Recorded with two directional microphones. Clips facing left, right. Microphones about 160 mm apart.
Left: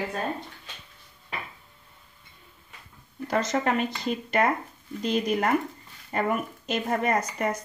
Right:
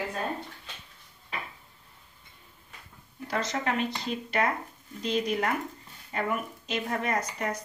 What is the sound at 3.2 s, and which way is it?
Speech, 50° left (ahead or behind).